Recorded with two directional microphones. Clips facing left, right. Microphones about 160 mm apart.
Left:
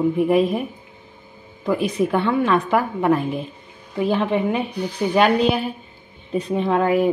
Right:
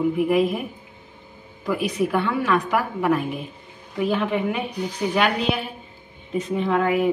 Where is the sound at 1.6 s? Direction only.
25° left (ahead or behind).